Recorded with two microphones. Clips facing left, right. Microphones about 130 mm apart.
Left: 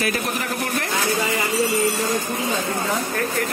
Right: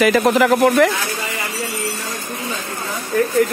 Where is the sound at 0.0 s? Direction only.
90° right.